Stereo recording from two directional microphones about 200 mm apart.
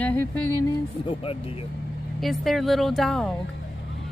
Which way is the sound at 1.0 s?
30° left (ahead or behind).